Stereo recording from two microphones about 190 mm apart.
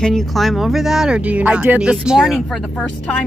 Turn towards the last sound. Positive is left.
turn(degrees=5)  # may be behind; listen again after turning